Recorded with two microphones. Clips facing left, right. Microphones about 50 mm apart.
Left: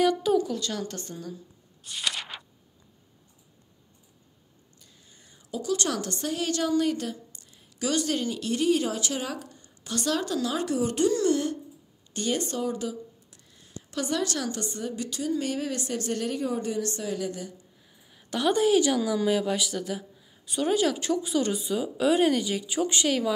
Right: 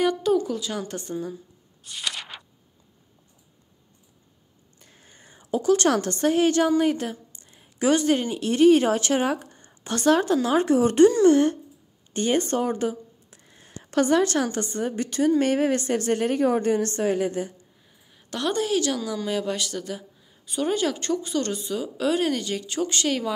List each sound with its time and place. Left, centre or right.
0.3 s a woman's voice: centre
4.7 s a woman's voice: right
8.5 s speech: right
13.4 s a sound: right
13.8 s a woman's voice: right
17.8 s speech: centre
23.0 s speech: centre